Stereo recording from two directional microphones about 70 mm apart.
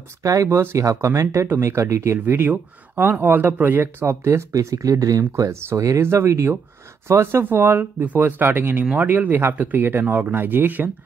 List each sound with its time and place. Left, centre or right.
0.2 s speech: right
3.8 s speech: right